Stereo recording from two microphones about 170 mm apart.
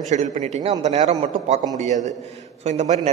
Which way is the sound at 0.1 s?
45° right (ahead or behind).